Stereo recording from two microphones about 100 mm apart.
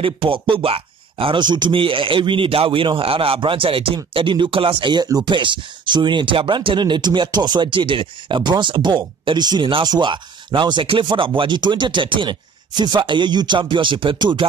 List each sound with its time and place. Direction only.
0.0 s speech: 60° right (ahead or behind)
5.0 s speech: 40° right (ahead or behind)
5.3 s speech: 55° right (ahead or behind)